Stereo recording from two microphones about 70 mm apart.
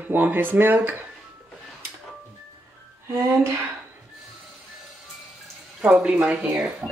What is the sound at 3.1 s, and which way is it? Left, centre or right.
Music, right.